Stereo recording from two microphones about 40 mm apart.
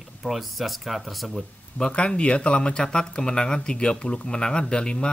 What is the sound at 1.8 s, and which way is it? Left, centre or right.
Speech, left.